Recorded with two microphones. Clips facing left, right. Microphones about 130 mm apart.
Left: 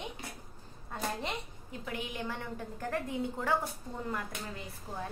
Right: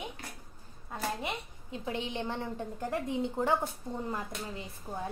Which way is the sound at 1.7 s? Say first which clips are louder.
Right 4 dB; 25° right (ahead or behind).